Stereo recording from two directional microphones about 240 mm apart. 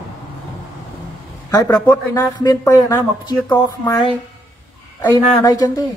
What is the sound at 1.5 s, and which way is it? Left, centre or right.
Speech, centre.